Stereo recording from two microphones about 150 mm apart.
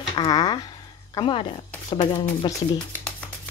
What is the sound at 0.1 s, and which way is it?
Speech, 30° left (ahead or behind).